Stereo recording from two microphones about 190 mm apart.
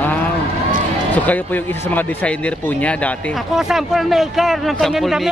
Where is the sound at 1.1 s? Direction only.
10° left (ahead or behind).